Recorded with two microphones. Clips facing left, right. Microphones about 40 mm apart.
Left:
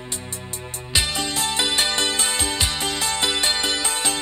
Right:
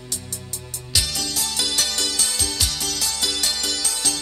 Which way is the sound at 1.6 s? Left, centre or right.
Left.